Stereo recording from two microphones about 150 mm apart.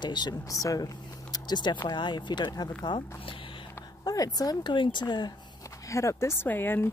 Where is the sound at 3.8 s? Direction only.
25° left (ahead or behind).